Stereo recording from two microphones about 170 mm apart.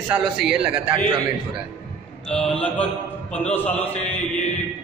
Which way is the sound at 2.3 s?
5° left (ahead or behind).